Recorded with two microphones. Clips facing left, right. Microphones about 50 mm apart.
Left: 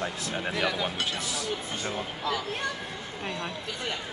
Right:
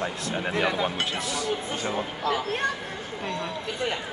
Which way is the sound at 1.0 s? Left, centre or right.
Centre.